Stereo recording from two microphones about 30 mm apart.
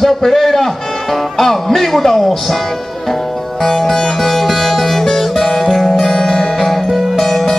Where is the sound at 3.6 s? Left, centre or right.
Centre.